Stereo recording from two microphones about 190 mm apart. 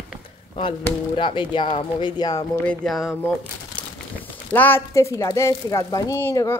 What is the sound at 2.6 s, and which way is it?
Speech, 5° left (ahead or behind).